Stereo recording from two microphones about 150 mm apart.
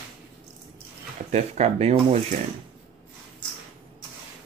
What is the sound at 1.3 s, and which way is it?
Speech, 45° right (ahead or behind).